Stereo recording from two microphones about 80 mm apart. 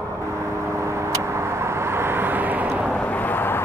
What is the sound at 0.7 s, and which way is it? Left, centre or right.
Vehicle, right.